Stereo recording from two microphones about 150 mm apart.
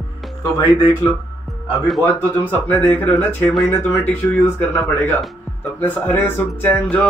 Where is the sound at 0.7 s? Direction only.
10° left (ahead or behind).